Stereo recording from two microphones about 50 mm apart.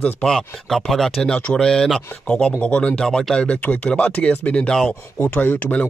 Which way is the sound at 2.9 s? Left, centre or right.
Centre.